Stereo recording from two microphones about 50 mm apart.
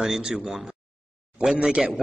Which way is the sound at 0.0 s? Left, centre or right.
Centre.